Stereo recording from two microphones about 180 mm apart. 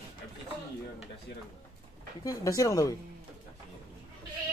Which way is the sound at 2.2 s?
20° left (ahead or behind).